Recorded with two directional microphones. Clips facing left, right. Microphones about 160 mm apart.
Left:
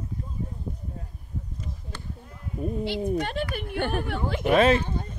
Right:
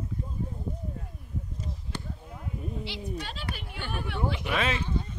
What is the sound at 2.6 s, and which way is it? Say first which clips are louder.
Speech: left 11 dB; 50° left (ahead or behind).